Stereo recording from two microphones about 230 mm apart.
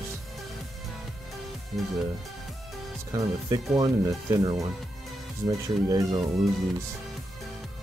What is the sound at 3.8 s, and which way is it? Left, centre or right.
Speech, centre.